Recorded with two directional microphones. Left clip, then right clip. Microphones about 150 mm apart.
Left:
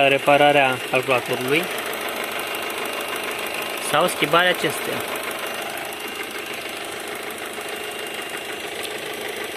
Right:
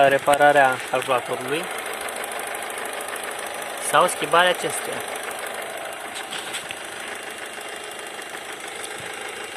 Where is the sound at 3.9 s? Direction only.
20° left (ahead or behind).